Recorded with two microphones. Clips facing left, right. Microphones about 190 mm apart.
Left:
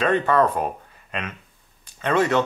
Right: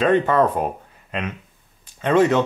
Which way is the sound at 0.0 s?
10° right (ahead or behind).